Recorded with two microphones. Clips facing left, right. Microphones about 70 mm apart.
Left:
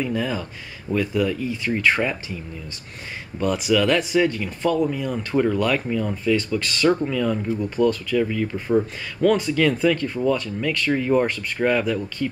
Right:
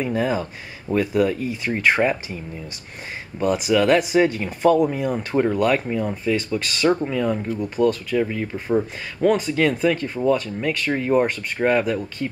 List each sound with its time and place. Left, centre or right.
0.0 s speech: right
1.1 s speech: right
1.6 s speech: centre
3.3 s speech: centre
3.7 s speech: centre
5.3 s speech: centre